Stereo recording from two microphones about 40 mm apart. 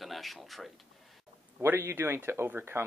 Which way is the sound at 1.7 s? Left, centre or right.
Right.